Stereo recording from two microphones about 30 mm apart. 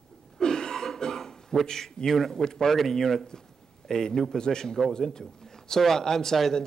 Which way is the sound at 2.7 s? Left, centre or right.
Centre.